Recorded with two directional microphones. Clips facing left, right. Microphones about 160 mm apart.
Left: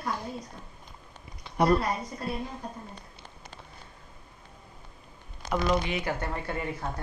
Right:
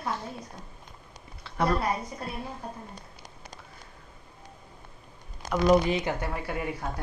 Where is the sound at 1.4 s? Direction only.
15° left (ahead or behind).